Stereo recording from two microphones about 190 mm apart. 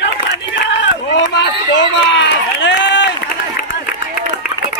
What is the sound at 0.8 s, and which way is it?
Run, 70° left (ahead or behind).